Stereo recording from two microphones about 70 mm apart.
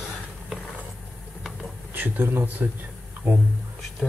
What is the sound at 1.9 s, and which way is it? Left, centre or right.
Speech, right.